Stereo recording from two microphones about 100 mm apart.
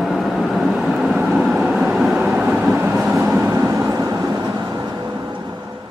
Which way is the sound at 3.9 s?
35° right (ahead or behind).